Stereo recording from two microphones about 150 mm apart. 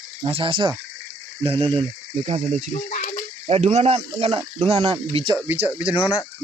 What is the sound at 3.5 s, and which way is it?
Speech, 50° right (ahead or behind).